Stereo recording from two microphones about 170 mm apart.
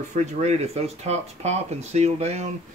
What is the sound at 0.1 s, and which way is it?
Speech, 40° right (ahead or behind).